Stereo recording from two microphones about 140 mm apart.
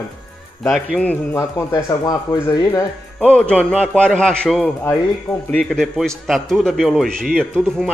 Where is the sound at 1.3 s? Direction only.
20° left (ahead or behind).